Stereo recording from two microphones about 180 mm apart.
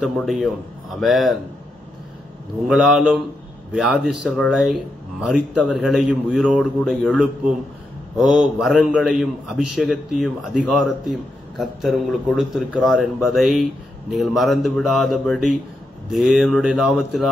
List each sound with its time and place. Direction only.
0.0 s a man's voice: centre (ahead or behind)
2.7 s a man's voice: centre (ahead or behind)
8.4 s a man's voice: 5° right (ahead or behind)